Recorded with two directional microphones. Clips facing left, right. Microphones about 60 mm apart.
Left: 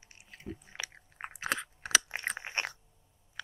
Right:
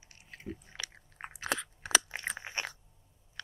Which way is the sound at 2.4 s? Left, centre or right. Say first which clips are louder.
Left 3 dB; left.